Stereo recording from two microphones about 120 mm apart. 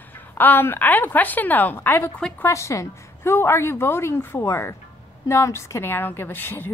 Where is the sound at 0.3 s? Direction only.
15° left (ahead or behind).